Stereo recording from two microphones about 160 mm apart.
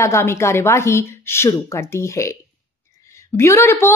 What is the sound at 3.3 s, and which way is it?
Speech, 15° left (ahead or behind).